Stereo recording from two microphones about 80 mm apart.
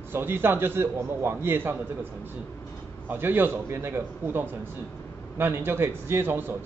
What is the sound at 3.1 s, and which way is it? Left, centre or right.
A man's voice, right.